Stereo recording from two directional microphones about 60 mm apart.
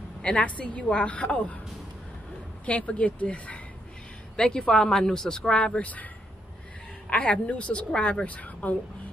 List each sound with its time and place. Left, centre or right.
0.2 s a woman's voice: left
2.6 s a woman's voice: left
4.4 s speech: centre
7.1 s a woman's voice: left